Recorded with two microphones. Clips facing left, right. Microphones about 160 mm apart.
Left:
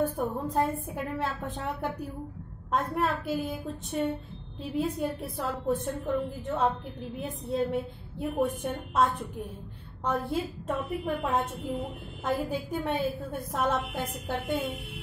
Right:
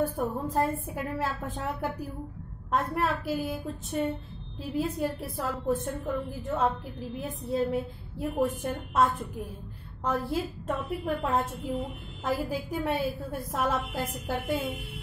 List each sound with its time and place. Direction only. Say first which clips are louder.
0.0 s a woman's voice: even; centre (ahead or behind)